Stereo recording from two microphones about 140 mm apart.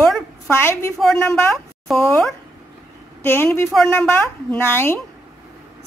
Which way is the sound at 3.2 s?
15° left (ahead or behind).